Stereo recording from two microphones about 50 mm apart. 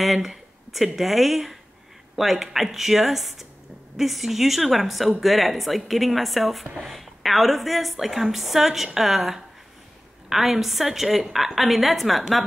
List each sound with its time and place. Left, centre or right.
0.0 s a woman's voice: centre